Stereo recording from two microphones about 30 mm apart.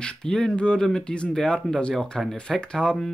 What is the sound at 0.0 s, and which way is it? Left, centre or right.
Speech, left.